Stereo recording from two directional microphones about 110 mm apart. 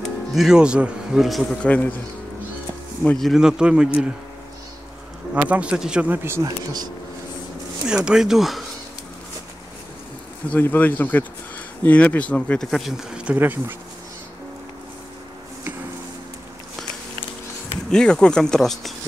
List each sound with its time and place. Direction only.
0.3 s speech: 5° right (ahead or behind); by 2.0 s 15° left (ahead or behind)
3.0 s speech: 5° left (ahead or behind)
5.3 s speech: 15° right (ahead or behind)
6.4 s speech: 40° right (ahead or behind)
7.8 s speech: 5° right (ahead or behind)
10.5 s speech: 15° left (ahead or behind); by 13.7 s 15° right (ahead or behind)
17.8 s speech: 5° left (ahead or behind)